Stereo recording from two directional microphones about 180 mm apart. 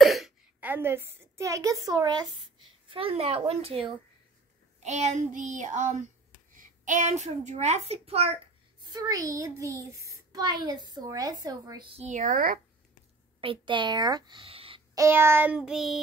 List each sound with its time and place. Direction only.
0.0 s a woman's voice: centre (ahead or behind); by 3.9 s 35° right (ahead or behind)
4.8 s child singing: 40° right (ahead or behind)
6.5 s a child's voice: 45° right (ahead or behind)
8.8 s a child's voice: 20° right (ahead or behind)
12.0 s child singing: 45° right (ahead or behind)
13.4 s speech: 30° right (ahead or behind)
15.0 s child singing: 15° right (ahead or behind)